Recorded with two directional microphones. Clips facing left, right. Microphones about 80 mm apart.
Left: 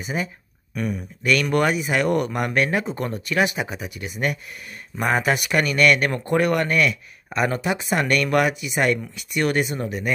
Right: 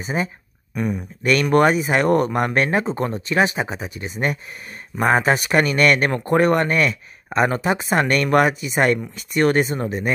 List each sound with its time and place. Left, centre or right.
0.0 s speech: right
1.2 s speech: right